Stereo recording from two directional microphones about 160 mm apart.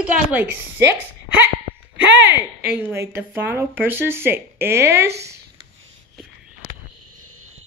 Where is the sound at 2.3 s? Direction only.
10° right (ahead or behind).